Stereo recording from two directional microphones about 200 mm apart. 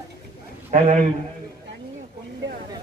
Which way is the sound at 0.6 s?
35° right (ahead or behind).